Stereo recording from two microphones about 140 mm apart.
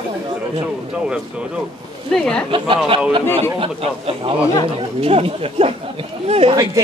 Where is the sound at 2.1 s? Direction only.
5° left (ahead or behind).